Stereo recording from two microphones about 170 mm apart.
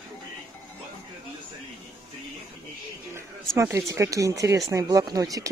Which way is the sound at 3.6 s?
20° right (ahead or behind).